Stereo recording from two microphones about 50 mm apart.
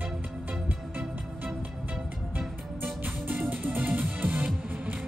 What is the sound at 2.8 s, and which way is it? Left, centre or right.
Music, right.